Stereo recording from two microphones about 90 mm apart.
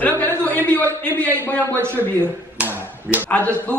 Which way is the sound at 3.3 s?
15° left (ahead or behind).